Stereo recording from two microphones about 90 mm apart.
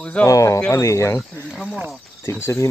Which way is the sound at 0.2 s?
35° left (ahead or behind).